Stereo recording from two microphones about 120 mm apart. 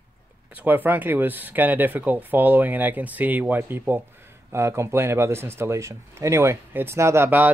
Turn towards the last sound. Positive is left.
turn(degrees=-15)  # may be behind; listen again after turning